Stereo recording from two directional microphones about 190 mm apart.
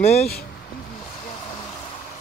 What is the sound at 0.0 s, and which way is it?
Speech, 35° left (ahead or behind).